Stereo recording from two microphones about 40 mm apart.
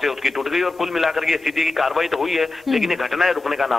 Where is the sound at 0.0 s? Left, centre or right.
Centre.